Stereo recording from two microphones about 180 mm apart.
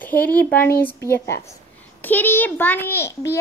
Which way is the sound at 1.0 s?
15° left (ahead or behind).